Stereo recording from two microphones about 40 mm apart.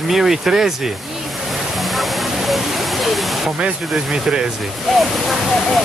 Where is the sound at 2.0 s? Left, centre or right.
Centre.